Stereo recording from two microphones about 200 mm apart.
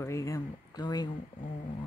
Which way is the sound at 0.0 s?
15° left (ahead or behind).